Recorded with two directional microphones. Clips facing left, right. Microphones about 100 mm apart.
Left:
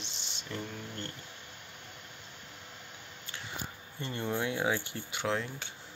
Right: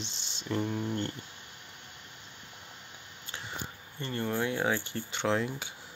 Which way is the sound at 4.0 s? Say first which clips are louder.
Right 2 dB; 15° left (ahead or behind).